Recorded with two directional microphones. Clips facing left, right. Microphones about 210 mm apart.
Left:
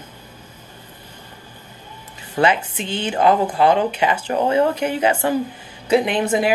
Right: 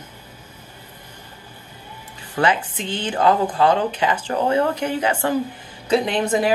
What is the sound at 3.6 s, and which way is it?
Speech, 20° left (ahead or behind).